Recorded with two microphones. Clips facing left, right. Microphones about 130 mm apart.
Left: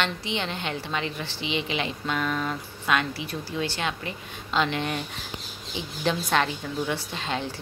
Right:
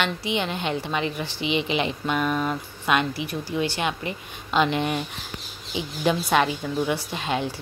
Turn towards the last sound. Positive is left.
turn(degrees=-15)  # may be behind; listen again after turning